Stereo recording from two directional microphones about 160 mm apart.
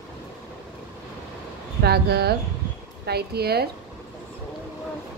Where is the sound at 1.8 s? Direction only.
85° right.